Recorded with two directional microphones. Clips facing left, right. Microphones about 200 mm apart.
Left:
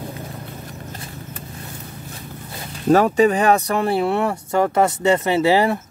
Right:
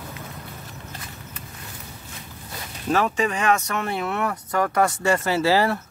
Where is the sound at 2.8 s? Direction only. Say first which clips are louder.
Left 8 dB; 40° left (ahead or behind).